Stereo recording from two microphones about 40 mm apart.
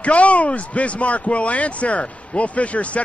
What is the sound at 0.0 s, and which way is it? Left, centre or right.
Speech, left.